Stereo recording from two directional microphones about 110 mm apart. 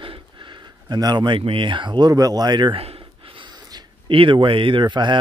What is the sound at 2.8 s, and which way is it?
Speech, 60° right (ahead or behind).